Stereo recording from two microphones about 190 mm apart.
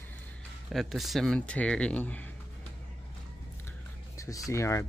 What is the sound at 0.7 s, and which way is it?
Speech, centre (ahead or behind).